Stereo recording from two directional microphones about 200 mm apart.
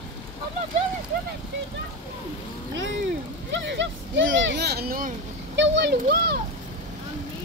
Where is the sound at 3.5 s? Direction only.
65° right (ahead or behind); by 5.1 s 45° right (ahead or behind).